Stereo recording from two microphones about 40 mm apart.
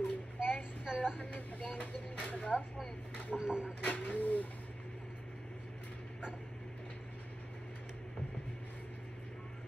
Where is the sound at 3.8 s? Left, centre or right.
Left.